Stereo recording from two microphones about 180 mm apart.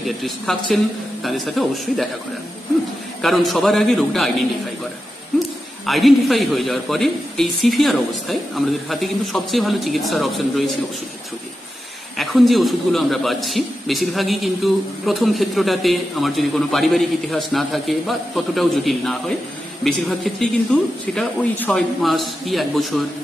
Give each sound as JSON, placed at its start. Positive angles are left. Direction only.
{"t": 0.0, "sound": "a man's voice", "side_deg": 0}
{"t": 3.2, "sound": "a man's voice", "side_deg": 0}
{"t": 5.3, "sound": "a sound", "side_deg": 0}
{"t": 5.9, "sound": "a man's voice", "side_deg": 0}
{"t": 12.2, "sound": "a man's voice", "side_deg": 0}